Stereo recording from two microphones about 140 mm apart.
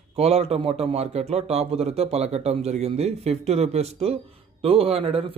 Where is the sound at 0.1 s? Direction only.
45° right (ahead or behind).